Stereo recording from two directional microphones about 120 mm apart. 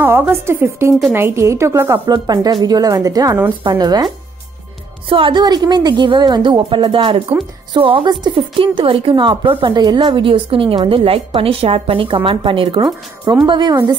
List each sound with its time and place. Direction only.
0.3 s a woman's voice: 20° right (ahead or behind)
5.1 s a woman's voice: 45° right (ahead or behind)